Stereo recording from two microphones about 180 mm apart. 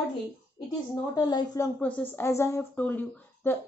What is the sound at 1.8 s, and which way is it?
A woman's voice, 10° left (ahead or behind).